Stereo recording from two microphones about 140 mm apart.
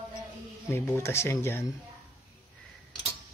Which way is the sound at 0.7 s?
20° left (ahead or behind).